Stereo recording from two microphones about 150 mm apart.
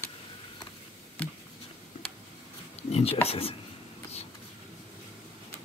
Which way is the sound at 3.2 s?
40° left (ahead or behind).